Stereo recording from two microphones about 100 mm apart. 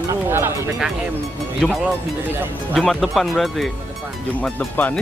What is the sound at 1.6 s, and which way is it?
Speech, 5° left (ahead or behind).